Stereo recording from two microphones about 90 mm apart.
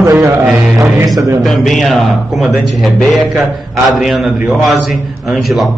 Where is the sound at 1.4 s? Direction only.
5° left (ahead or behind).